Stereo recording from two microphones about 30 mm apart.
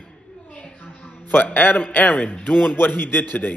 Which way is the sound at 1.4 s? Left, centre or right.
Left.